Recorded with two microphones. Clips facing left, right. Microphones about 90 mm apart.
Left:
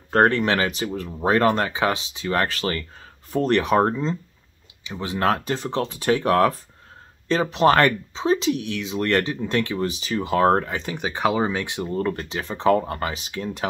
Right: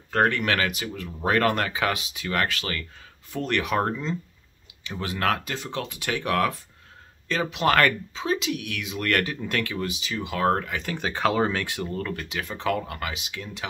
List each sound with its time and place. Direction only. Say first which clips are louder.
0.1 s speech: left 4 dB; 35° left (ahead or behind)
4.8 s speech: left 4 dB; 20° left (ahead or behind); by 10.8 s 35° left (ahead or behind)
10.8 s speech: left 2 dB; 15° left (ahead or behind); by 13.7 s 40° left (ahead or behind)